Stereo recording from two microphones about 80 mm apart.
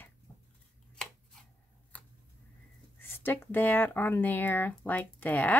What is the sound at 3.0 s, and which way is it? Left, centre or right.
Speech, left.